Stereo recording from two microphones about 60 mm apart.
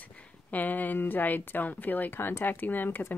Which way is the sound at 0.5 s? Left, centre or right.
Left.